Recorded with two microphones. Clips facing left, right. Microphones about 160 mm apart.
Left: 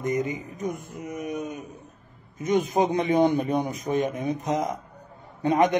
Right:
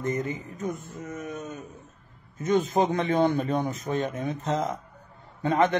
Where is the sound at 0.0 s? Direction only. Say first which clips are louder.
Left 2 dB; 15° left (ahead or behind).